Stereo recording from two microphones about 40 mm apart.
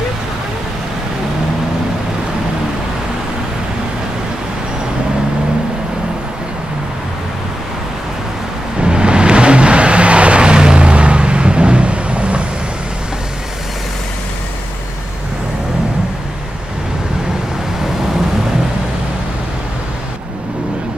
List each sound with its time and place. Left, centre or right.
8.8 s vehicle: right